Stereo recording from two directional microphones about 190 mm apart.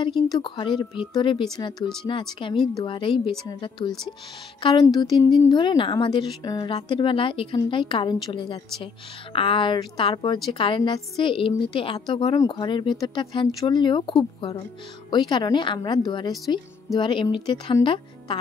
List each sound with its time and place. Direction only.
0.0 s speech: 25° left (ahead or behind)
2.4 s speech: 25° left (ahead or behind)